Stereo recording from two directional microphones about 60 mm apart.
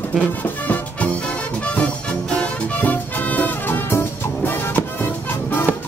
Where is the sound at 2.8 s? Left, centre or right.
Left.